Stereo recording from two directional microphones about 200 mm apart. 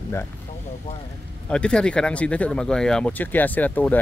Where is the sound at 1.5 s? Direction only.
5° left (ahead or behind).